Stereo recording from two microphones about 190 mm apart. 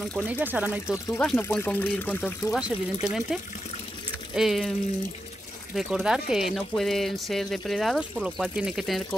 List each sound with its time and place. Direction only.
0.0 s speech: 5° left (ahead or behind)
0.3 s speech: 10° right (ahead or behind)
0.9 s speech: 15° left (ahead or behind)
2.5 s speech: centre (ahead or behind)
4.4 s speech: centre (ahead or behind)
5.8 s speech: centre (ahead or behind)